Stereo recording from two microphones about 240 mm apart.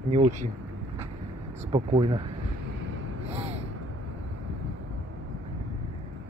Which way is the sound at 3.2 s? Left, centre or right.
Right.